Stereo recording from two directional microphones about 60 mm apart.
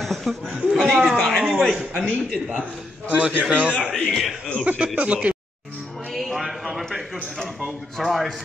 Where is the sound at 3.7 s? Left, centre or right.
Centre.